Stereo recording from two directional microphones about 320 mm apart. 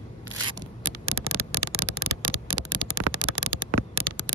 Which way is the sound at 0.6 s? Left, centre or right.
Right.